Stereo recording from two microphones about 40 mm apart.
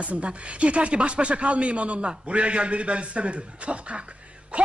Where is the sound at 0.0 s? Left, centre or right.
Right.